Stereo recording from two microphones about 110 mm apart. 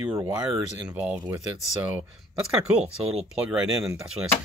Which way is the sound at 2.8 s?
70° right (ahead or behind).